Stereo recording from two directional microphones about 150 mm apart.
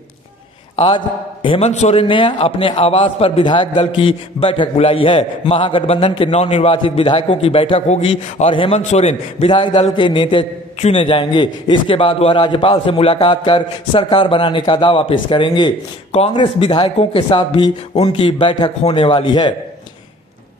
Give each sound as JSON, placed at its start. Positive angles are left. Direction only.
{"t": 0.7, "sound": "a man's voice", "side_deg": 35}
{"t": 1.7, "sound": "a man's voice", "side_deg": 50}